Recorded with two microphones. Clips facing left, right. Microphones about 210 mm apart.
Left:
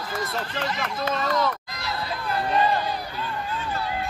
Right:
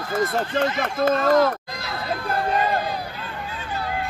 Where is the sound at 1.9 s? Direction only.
55° right (ahead or behind).